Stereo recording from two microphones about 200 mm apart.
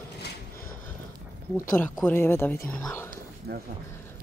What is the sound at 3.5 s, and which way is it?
Speech, 50° right (ahead or behind).